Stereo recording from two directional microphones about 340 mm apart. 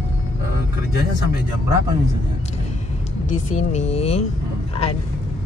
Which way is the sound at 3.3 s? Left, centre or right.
Centre.